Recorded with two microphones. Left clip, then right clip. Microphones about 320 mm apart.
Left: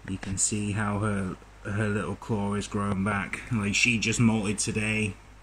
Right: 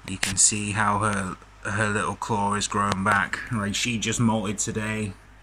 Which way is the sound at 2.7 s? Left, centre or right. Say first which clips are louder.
Right 8 dB; right.